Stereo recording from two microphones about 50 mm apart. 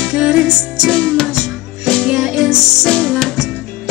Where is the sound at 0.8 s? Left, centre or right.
Centre.